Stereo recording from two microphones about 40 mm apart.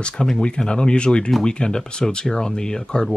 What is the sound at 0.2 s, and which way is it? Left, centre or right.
Speech, centre.